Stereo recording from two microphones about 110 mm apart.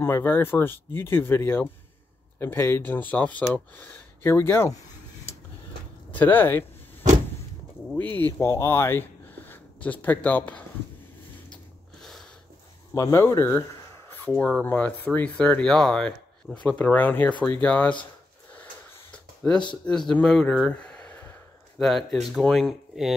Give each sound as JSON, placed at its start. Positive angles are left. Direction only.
{"t": 0.0, "sound": "speech", "side_deg": 20}
{"t": 6.1, "sound": "speech", "side_deg": 15}
{"t": 8.2, "sound": "speech", "side_deg": 25}
{"t": 12.0, "sound": "a sound", "side_deg": 0}
{"t": 12.9, "sound": "speech", "side_deg": 30}
{"t": 13.4, "sound": "a sound", "side_deg": 20}
{"t": 14.4, "sound": "speech", "side_deg": 5}
{"t": 19.1, "sound": "a sound", "side_deg": 10}
{"t": 19.7, "sound": "speech", "side_deg": 5}